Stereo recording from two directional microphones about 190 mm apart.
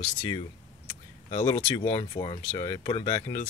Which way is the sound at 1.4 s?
25° left (ahead or behind).